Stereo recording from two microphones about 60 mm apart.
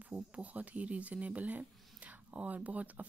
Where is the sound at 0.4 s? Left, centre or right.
Right.